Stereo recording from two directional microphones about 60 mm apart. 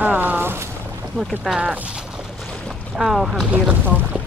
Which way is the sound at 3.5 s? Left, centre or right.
Right.